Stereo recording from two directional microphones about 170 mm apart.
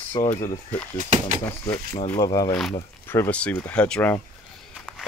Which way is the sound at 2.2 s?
25° left (ahead or behind).